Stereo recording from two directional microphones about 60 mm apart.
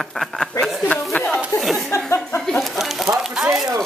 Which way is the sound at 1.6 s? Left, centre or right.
Centre.